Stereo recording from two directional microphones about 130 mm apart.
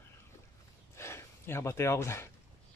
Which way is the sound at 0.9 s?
20° left (ahead or behind).